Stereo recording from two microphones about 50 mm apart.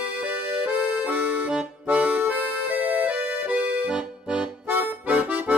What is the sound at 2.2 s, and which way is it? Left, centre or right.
Accordion, right.